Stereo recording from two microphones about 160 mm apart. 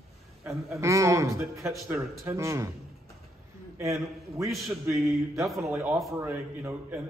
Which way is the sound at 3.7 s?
20° right (ahead or behind).